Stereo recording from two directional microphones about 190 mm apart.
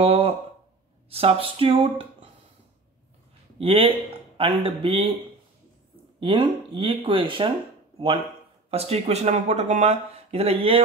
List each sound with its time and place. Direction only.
0.0 s a sound: 30° right (ahead or behind)
1.1 s speech: 30° right (ahead or behind)
3.5 s speech: 30° right (ahead or behind)
6.1 s speech: 25° right (ahead or behind)
8.6 s speech: 30° right (ahead or behind)